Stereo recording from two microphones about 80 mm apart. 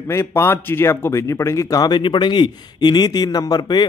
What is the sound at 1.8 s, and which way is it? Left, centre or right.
A man's voice, left.